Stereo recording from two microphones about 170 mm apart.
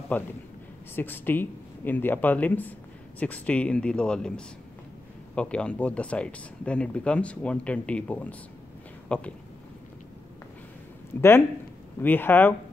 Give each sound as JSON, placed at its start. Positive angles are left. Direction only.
{"t": 0.1, "sound": "speech", "side_deg": 10}
{"t": 11.1, "sound": "speech", "side_deg": 15}